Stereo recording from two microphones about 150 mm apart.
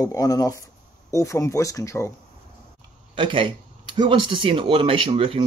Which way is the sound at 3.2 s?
35° right (ahead or behind).